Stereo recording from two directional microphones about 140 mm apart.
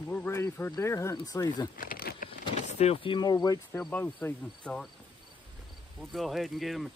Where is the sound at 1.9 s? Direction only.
90° left.